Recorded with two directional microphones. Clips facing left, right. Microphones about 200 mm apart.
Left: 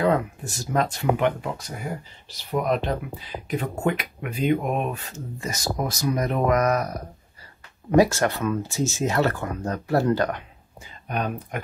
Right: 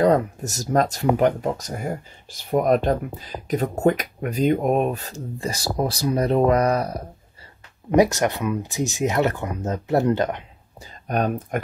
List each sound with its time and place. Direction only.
0.0 s speech: 40° right (ahead or behind)
7.9 s speech: 20° right (ahead or behind)
10.8 s speech: 45° right (ahead or behind)